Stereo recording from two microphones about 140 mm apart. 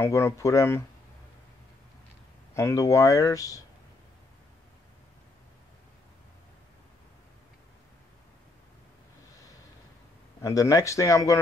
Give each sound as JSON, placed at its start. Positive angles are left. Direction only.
{"t": 0.0, "sound": "speech", "side_deg": 20}
{"t": 2.5, "sound": "speech", "side_deg": 20}
{"t": 10.4, "sound": "speech", "side_deg": 25}